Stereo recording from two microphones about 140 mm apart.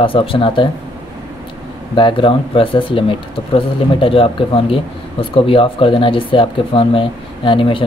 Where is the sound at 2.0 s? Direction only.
40° left (ahead or behind).